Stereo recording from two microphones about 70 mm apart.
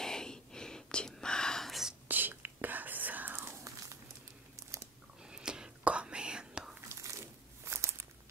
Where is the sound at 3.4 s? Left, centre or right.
Right.